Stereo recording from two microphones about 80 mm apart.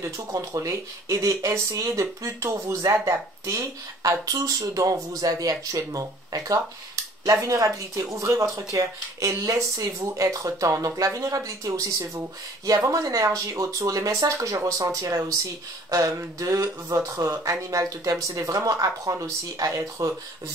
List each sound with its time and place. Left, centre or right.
0.6 s speech: right